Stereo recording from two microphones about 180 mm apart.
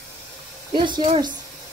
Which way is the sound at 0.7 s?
25° right (ahead or behind).